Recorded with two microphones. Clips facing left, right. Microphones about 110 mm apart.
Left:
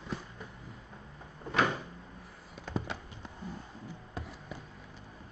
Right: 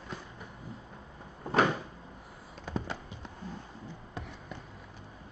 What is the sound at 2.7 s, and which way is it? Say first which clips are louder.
Fireworks: even; 10° right (ahead or behind).